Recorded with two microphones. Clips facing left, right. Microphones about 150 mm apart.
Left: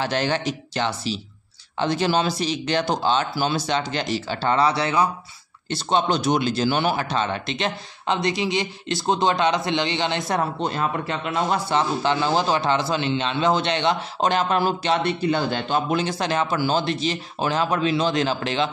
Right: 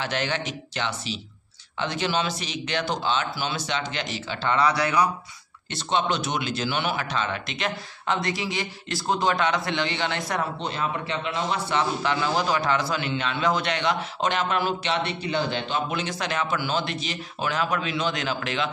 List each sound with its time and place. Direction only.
0.0 s a man's voice: 35° left (ahead or behind)
10.6 s a man's voice: 45° left (ahead or behind)
12.0 s a man's voice: 30° left (ahead or behind)